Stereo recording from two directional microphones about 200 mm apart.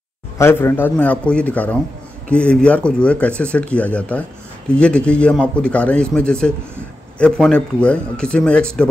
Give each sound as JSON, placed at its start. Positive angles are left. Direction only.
{"t": 0.4, "sound": "a man's voice", "side_deg": 10}